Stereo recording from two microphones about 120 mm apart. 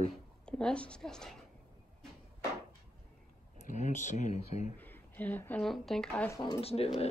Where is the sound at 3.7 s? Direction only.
80° left.